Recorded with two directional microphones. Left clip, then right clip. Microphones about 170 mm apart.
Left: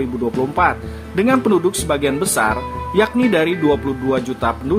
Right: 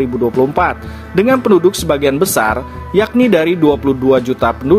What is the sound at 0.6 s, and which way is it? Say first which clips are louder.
Speech: right 2 dB; 40° right (ahead or behind).